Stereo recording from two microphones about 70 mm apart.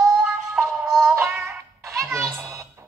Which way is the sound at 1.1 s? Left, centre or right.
Right.